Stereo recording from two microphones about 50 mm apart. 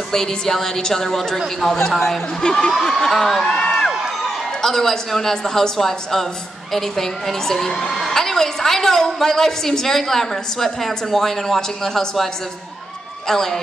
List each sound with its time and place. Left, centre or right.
0.1 s a woman's voice: centre
13.3 s a woman's voice: centre